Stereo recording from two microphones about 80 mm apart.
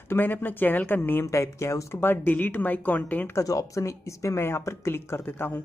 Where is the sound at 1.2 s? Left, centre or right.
Left; by 3.3 s centre.